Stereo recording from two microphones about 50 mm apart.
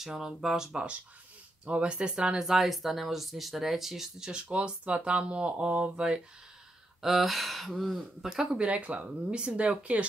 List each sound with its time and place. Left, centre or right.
0.0 s speech: centre
1.7 s speech: centre
4.3 s speech: right
7.0 s speech: centre
8.5 s speech: right